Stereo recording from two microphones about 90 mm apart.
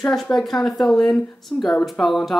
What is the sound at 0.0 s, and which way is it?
Speech, 5° left (ahead or behind).